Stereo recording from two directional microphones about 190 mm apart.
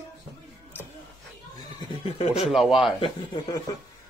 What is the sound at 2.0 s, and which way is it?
Speech, 30° left (ahead or behind).